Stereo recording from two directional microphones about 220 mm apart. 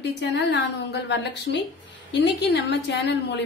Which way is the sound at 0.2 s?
50° left (ahead or behind).